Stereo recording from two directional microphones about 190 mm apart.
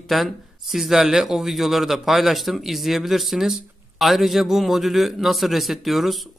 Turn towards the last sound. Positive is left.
turn(degrees=0)  # may be behind; listen again after turning